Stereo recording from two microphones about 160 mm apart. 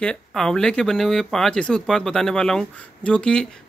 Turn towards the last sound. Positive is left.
turn(degrees=5)  # may be behind; listen again after turning